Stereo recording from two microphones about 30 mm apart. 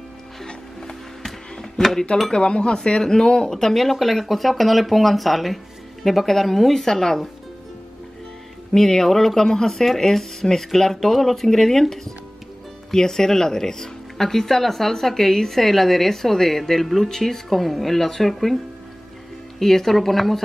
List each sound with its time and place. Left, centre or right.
2.3 s speech: left
3.4 s speech: centre
6.7 s speech: centre
8.7 s speech: centre
17.9 s speech: centre
19.6 s speech: centre